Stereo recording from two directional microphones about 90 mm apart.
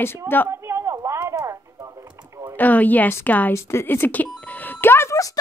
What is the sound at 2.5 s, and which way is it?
A woman's voice, 20° left (ahead or behind).